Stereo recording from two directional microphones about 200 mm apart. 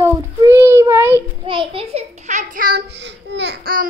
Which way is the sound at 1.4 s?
25° right (ahead or behind).